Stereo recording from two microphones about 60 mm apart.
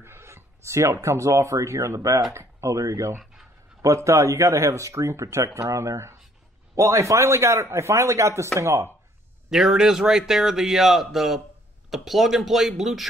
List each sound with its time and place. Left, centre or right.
0.0 s a man's voice: right
9.5 s speech: centre